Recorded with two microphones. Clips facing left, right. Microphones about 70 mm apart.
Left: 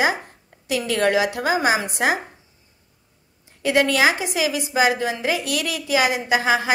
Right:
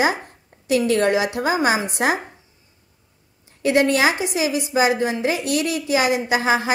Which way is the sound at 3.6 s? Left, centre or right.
Right.